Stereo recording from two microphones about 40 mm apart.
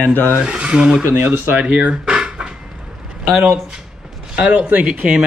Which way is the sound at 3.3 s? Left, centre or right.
Right.